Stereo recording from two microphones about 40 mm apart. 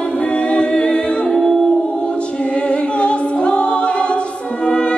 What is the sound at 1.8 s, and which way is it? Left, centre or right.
A capella, left.